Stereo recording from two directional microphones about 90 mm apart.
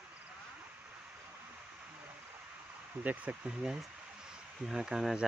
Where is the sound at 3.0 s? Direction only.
15° right (ahead or behind).